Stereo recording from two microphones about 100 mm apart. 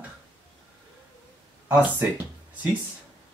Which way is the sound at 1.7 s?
15° right (ahead or behind).